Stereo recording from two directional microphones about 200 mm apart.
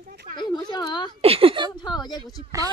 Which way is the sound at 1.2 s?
30° right (ahead or behind).